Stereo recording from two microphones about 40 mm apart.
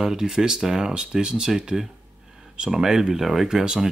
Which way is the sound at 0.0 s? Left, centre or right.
Centre.